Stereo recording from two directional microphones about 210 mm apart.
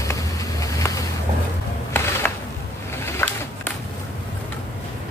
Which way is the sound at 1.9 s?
10° left (ahead or behind).